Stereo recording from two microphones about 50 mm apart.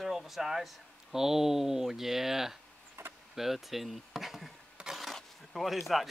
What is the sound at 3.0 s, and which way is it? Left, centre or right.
Vehicle, right.